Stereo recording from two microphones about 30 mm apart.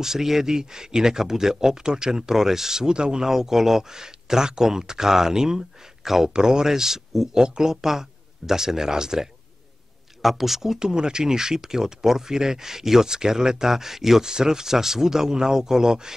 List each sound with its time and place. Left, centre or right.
0.0 s speech: centre
2.9 s speech: right
3.3 s speech: centre
6.0 s speech: centre
6.3 s speech: right
7.4 s speech: right
7.7 s speech: centre
10.2 s speech: centre
10.8 s speech: right